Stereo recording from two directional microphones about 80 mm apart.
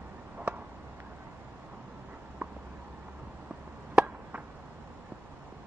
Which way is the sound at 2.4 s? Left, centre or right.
Centre.